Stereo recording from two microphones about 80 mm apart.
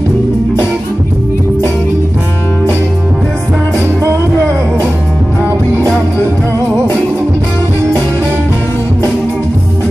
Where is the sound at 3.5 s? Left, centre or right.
Right.